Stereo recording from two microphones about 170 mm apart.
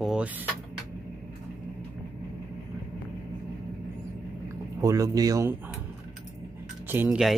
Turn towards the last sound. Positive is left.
turn(degrees=-10)  # may be behind; listen again after turning